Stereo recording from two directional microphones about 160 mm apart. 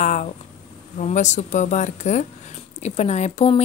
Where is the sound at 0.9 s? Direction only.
50° left (ahead or behind).